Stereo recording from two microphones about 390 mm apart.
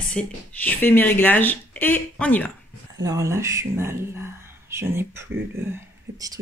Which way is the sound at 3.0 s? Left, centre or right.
Centre.